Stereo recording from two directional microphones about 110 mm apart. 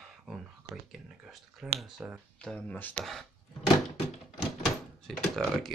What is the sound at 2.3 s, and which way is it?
Speech, 10° left (ahead or behind).